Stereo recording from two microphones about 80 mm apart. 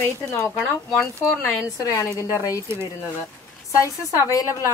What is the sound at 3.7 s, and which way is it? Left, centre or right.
Speech, left.